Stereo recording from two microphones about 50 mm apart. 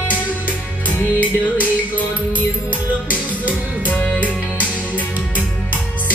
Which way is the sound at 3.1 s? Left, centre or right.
Left.